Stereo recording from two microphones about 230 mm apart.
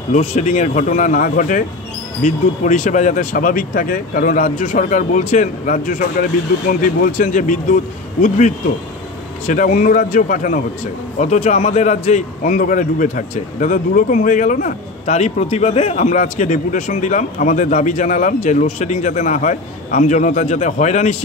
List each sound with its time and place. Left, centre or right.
0.1 s a man's voice: left